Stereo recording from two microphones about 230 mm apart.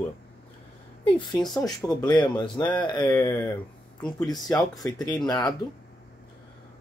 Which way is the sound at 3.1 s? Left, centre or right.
Centre.